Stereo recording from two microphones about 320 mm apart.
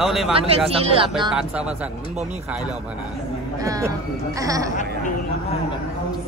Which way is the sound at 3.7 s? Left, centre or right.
Centre.